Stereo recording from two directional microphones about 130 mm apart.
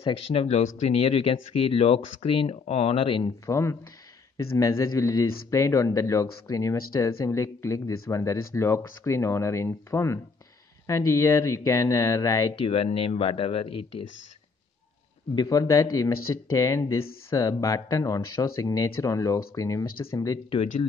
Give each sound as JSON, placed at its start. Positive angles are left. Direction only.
{"t": 0.0, "sound": "speech", "side_deg": 45}
{"t": 3.4, "sound": "speech", "side_deg": 20}
{"t": 12.5, "sound": "speech", "side_deg": 50}
{"t": 15.3, "sound": "speech", "side_deg": 25}